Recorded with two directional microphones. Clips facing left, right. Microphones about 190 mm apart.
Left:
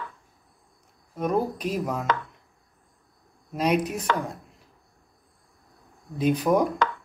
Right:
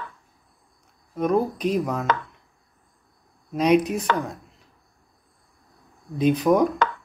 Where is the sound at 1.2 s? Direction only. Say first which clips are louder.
Right 4 dB; 5° left (ahead or behind).